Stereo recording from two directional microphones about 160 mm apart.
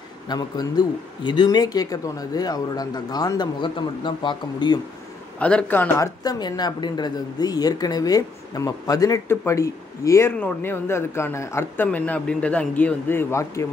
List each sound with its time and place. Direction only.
0.3 s speech: 25° left (ahead or behind)
5.4 s speech: 5° left (ahead or behind)